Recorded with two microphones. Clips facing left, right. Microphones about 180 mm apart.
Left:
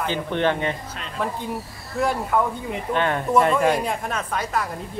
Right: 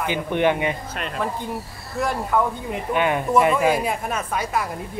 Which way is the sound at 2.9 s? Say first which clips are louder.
Right 1 dB; 10° right (ahead or behind).